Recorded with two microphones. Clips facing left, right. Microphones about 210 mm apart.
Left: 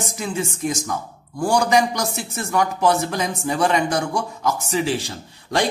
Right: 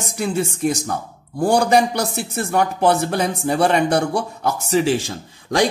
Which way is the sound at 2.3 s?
35° right (ahead or behind).